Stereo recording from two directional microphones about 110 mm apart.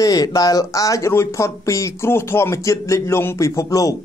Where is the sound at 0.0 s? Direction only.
35° left (ahead or behind).